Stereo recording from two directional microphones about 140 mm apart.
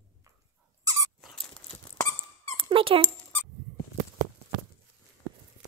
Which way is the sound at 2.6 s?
40° right (ahead or behind).